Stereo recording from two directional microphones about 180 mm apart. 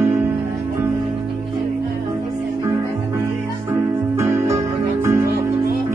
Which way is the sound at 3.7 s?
15° right (ahead or behind).